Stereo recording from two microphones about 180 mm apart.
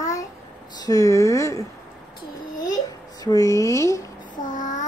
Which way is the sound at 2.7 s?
20° left (ahead or behind).